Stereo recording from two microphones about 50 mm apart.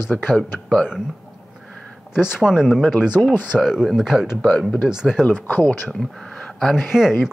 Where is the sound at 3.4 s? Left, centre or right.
Centre.